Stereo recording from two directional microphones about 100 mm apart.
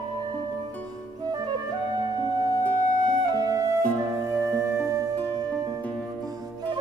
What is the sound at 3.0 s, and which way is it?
Flute, 40° right (ahead or behind).